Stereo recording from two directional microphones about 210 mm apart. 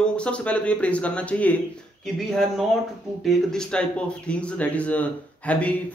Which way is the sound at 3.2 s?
5° left (ahead or behind).